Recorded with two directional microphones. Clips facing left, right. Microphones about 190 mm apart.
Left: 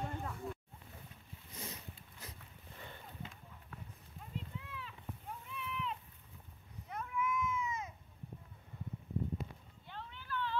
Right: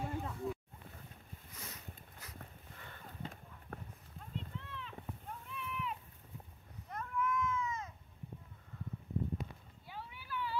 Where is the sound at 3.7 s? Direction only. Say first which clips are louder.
Right 5 dB; 55° right (ahead or behind).